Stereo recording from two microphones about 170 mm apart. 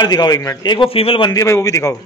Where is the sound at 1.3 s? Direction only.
20° left (ahead or behind).